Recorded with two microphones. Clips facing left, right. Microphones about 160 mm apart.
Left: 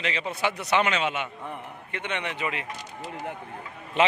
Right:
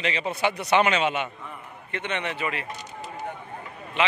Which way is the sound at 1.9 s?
10° left (ahead or behind).